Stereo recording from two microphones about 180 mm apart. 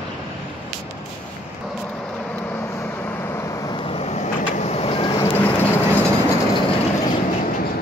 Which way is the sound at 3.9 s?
35° left (ahead or behind).